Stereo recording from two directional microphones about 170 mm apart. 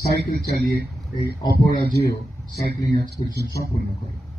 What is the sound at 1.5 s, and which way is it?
Speech, 60° left (ahead or behind).